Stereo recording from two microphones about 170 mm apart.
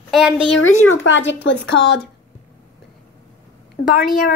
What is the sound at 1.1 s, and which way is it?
Speech, 90° left.